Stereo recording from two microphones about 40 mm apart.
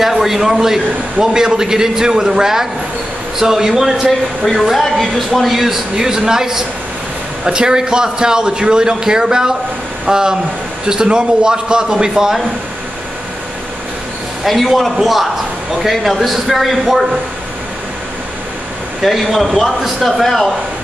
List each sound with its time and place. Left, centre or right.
0.0 s a man's voice: centre
4.7 s a man's voice: centre
14.4 s a man's voice: centre
19.0 s a man's voice: centre